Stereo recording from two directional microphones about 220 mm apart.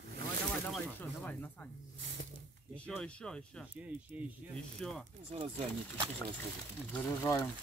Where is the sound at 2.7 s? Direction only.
5° left (ahead or behind).